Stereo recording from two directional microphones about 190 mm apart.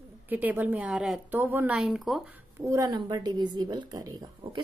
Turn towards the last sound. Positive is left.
turn(degrees=-20)  # may be behind; listen again after turning